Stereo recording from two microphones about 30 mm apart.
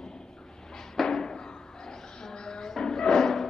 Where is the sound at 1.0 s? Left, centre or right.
Left.